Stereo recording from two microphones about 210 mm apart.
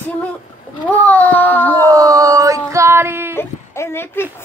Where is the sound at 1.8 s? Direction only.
15° right (ahead or behind).